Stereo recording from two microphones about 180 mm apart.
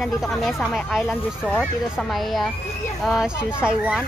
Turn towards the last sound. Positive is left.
turn(degrees=-5)  # may be behind; listen again after turning